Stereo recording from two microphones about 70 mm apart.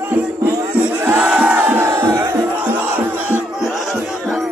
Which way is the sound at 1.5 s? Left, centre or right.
Right.